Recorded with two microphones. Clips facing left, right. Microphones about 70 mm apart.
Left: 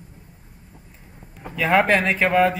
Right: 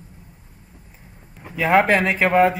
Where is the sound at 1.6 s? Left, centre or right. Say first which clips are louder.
Right 1 dB; centre.